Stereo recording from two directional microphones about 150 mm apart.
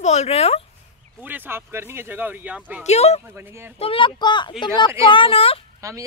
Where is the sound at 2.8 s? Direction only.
45° left (ahead or behind).